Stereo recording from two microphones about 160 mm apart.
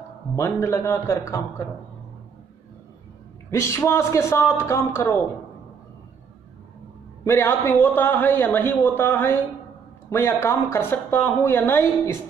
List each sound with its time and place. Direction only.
0.4 s speech: 15° left (ahead or behind)
3.4 s speech: 15° left (ahead or behind)
7.2 s speech: 15° left (ahead or behind)